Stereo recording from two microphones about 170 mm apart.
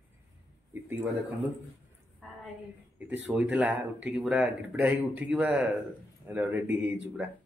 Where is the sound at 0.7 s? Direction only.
10° right (ahead or behind).